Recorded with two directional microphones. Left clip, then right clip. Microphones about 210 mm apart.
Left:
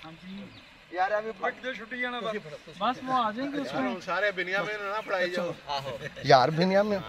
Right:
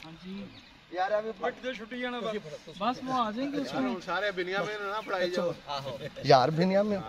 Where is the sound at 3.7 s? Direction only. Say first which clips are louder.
Left 4 dB; 25° left (ahead or behind).